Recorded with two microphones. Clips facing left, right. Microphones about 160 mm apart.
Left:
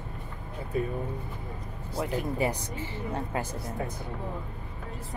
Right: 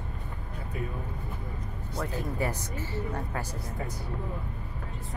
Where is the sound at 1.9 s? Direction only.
15° left (ahead or behind).